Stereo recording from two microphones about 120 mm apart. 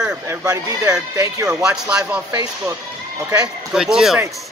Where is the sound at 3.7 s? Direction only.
5° right (ahead or behind).